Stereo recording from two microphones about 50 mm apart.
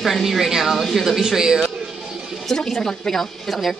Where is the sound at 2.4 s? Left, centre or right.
Centre.